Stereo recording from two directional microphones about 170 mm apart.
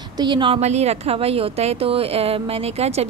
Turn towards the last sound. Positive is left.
turn(degrees=-35)  # may be behind; listen again after turning